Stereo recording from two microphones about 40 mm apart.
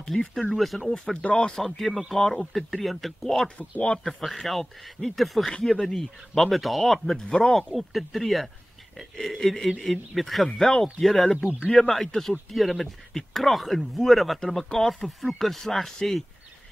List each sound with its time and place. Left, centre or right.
0.1 s speech: centre
0.6 s speech: centre
1.1 s speech: left
1.5 s speech: centre
5.4 s speech: centre